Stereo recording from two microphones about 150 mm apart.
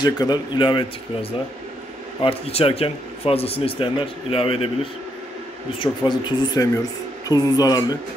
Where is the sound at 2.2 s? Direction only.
40° left (ahead or behind).